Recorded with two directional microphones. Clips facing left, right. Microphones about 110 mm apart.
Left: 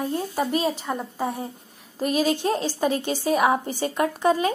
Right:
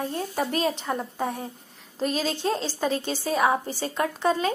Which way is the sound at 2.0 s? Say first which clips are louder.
Left 4 dB; 15° left (ahead or behind).